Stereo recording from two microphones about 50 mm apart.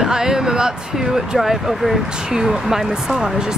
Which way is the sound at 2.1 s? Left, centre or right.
Centre.